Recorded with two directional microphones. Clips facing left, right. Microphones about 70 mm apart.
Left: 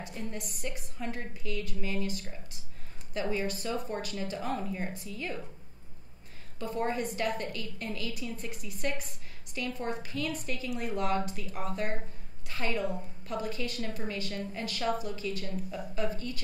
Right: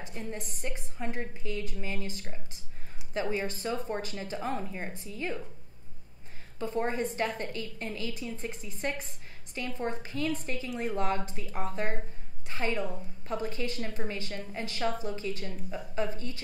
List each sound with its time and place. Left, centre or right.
0.0 s a woman's voice: right
3.2 s a woman's voice: right
6.6 s a woman's voice: right